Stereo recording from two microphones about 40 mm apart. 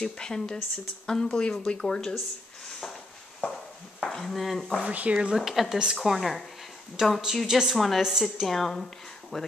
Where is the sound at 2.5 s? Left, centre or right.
Centre.